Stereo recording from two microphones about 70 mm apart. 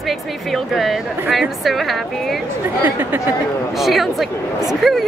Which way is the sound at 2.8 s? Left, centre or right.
Right.